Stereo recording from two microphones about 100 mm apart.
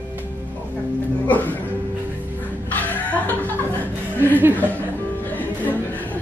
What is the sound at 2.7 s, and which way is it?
Chuckle, 15° left (ahead or behind).